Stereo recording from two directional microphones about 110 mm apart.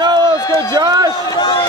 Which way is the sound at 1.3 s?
45° left (ahead or behind).